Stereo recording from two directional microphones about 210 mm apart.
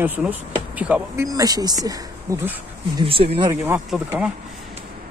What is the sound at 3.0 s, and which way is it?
Speech, 25° right (ahead or behind).